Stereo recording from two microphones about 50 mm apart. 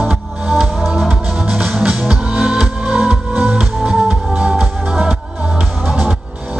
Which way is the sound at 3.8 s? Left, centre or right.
Centre.